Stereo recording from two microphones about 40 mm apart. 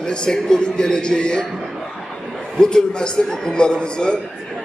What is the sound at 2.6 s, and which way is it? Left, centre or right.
A man's voice, centre.